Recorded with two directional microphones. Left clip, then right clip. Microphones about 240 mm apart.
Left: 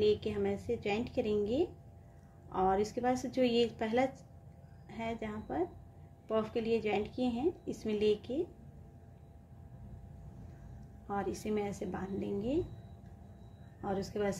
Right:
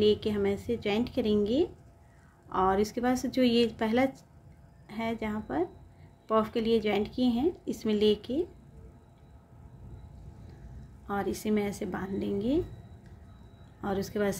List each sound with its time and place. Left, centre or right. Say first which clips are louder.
0.0 s a woman's voice: right 5 dB; centre
11.1 s a woman's voice: right 5 dB; centre
13.7 s a woman's voice: right 5 dB; centre